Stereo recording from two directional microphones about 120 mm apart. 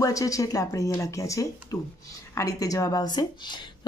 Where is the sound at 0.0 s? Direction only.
30° left (ahead or behind).